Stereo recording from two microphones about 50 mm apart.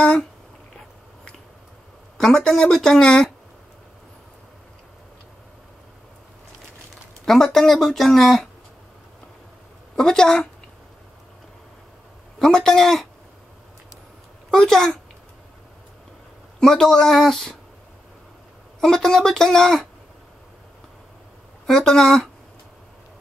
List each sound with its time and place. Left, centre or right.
0.0 s speech: left
2.1 s speech: centre
7.2 s speech: centre
9.9 s speech: centre
12.4 s speech: centre
14.7 s speech: centre
16.5 s speech: centre
18.8 s speech: centre
21.6 s speech: centre